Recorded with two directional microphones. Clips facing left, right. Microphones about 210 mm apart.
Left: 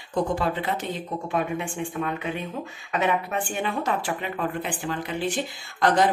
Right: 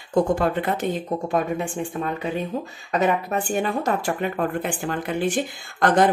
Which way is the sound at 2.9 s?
40° right (ahead or behind).